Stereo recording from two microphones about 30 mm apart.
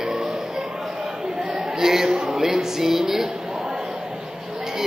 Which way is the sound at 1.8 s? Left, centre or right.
Centre.